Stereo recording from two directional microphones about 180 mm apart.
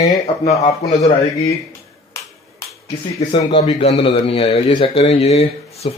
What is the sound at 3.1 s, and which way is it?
A man's voice, 35° left (ahead or behind).